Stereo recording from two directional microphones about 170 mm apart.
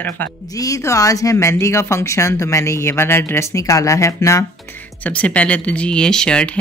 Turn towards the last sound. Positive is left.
turn(degrees=5)  # may be behind; listen again after turning